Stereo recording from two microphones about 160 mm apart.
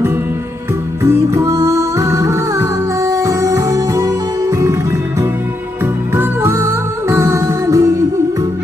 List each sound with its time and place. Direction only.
1.0 s music: 20° right (ahead or behind)
6.1 s music: 15° right (ahead or behind)